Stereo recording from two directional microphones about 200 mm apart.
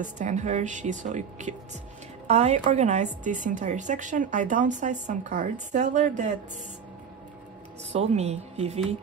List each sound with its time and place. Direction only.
0.0 s speech: 40° right (ahead or behind)
7.9 s speech: 35° right (ahead or behind)